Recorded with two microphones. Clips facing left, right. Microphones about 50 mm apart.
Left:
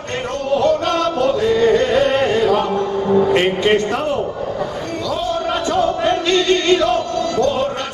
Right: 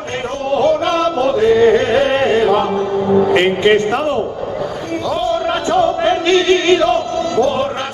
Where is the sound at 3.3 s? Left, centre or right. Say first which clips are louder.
Right 3 dB; right.